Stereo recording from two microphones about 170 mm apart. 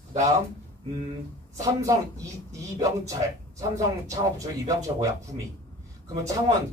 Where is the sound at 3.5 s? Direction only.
20° right (ahead or behind).